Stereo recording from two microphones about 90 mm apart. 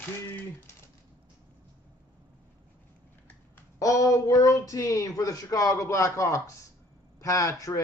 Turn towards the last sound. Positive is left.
turn(degrees=35)  # may be behind; listen again after turning